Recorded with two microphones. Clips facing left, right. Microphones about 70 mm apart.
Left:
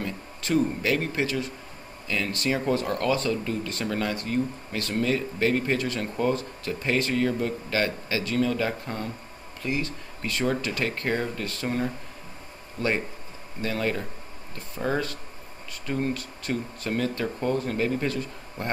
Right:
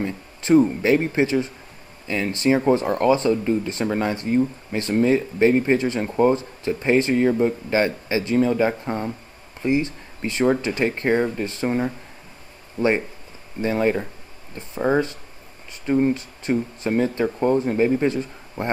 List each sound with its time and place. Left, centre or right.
0.0 s speech: right